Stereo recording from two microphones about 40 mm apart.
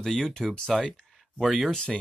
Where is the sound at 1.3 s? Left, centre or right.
Centre.